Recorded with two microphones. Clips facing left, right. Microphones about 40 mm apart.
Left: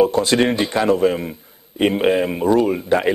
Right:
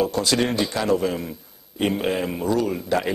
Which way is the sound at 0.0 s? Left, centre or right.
Left.